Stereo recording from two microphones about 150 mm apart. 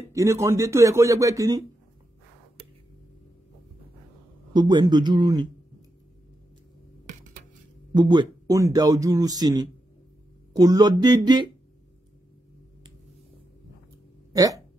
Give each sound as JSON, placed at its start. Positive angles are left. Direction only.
{"t": 0.1, "sound": "speech", "side_deg": -20}
{"t": 4.6, "sound": "speech", "side_deg": -30}
{"t": 7.9, "sound": "speech", "side_deg": -30}
{"t": 14.3, "sound": "speech", "side_deg": -25}